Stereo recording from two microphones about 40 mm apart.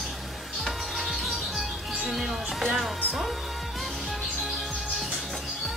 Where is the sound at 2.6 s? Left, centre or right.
Centre.